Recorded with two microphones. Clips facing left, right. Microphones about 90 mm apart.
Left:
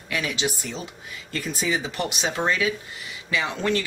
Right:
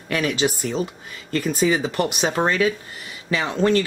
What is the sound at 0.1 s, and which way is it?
Speech, 45° right (ahead or behind).